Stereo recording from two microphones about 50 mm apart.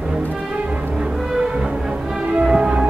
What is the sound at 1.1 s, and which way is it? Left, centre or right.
Music, centre.